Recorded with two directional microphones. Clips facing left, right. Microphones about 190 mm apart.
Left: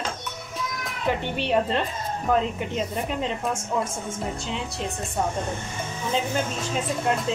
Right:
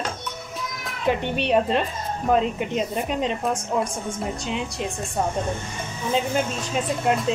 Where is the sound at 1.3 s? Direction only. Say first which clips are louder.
Right 2 dB; 20° right (ahead or behind).